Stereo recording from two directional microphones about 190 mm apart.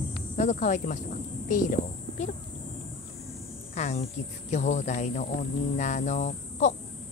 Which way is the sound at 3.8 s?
35° left (ahead or behind).